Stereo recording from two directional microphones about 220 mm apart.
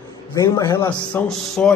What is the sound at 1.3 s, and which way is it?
Speech, centre (ahead or behind).